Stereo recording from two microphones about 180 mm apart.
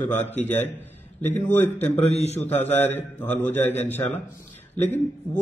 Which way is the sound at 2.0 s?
35° left (ahead or behind).